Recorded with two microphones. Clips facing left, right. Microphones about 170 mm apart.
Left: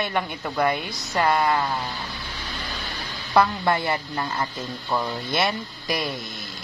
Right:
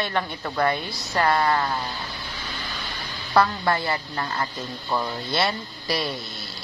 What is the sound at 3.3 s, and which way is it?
A woman's voice, 20° left (ahead or behind).